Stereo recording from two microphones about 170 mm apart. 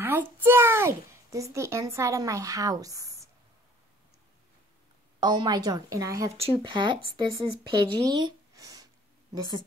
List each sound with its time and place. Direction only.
0.0 s a child's voice: 15° right (ahead or behind)
5.2 s speech: 25° right (ahead or behind)
6.3 s speech: 35° right (ahead or behind)